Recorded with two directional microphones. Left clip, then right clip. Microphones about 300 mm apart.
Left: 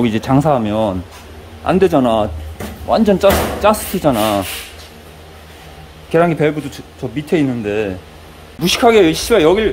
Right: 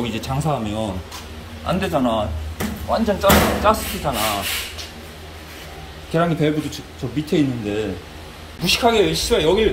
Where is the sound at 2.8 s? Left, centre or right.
Left.